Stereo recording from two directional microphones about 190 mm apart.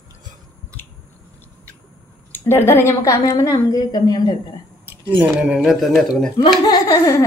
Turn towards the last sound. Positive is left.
turn(degrees=20)  # may be behind; listen again after turning